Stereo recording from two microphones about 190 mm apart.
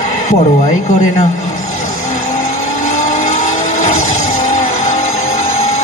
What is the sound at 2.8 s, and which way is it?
Vehicle, 40° left (ahead or behind).